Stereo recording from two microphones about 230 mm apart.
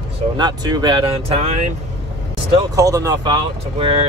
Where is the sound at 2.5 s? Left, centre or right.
Centre.